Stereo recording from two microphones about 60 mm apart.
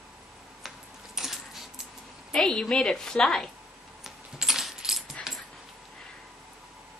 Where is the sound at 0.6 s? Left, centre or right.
Centre.